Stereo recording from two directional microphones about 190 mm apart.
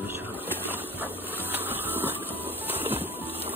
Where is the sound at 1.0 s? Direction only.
10° right (ahead or behind).